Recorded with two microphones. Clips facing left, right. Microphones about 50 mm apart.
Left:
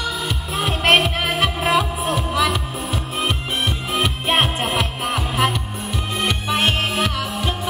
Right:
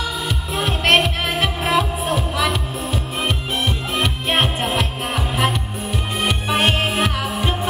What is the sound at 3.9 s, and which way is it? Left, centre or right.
Music, centre.